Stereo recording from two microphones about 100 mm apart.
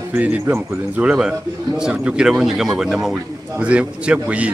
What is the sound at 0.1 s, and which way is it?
A man's voice, 15° right (ahead or behind).